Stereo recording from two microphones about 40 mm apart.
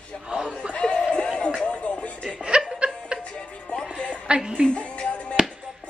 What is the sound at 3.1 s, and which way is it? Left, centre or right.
Music, right.